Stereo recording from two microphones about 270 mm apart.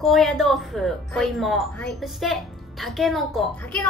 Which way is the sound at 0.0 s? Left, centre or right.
Centre.